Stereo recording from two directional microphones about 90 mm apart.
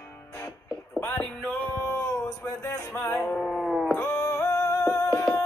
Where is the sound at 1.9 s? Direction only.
35° left (ahead or behind).